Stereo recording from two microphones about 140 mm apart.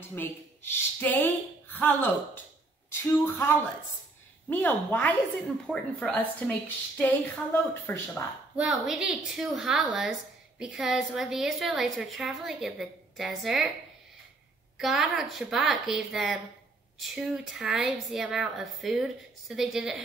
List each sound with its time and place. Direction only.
0.0 s a woman's voice: 15° left (ahead or behind)
8.5 s a woman's voice: 5° right (ahead or behind)
14.8 s a woman's voice: centre (ahead or behind)